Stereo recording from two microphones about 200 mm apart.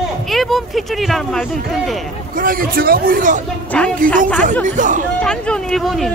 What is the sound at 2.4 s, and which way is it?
A man's voice, 45° right (ahead or behind).